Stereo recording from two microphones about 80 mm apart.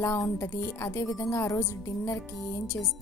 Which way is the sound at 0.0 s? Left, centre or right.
Left.